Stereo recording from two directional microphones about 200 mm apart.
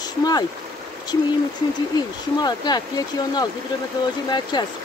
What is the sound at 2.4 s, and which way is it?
Speech, 20° left (ahead or behind).